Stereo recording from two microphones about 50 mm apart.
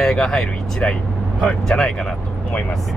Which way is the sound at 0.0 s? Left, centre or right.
Centre.